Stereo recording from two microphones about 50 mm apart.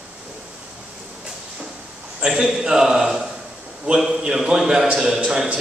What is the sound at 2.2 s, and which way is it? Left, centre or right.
A man's voice, centre.